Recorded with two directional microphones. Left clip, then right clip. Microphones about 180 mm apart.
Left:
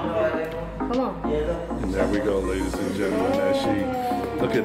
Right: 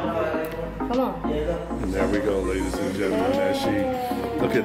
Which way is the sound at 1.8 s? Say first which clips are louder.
Even; centre (ahead or behind).